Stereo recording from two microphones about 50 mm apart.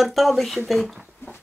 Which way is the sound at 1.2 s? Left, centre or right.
Left.